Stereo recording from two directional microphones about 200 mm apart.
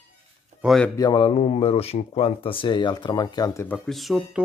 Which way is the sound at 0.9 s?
20° left (ahead or behind).